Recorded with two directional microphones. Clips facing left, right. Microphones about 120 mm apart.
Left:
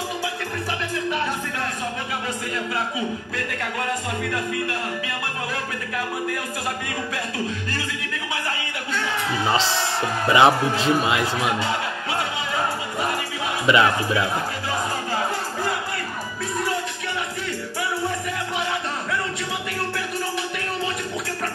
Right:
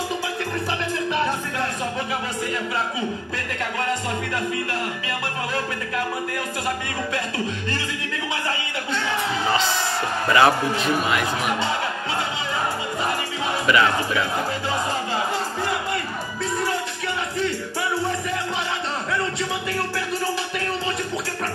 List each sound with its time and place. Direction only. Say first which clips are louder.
10.2 s a man's voice: left 1 dB; 20° left (ahead or behind)
13.7 s a man's voice: left 2 dB; 25° left (ahead or behind)